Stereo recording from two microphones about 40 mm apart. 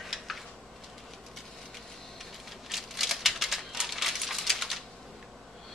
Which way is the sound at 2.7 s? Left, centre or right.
Centre.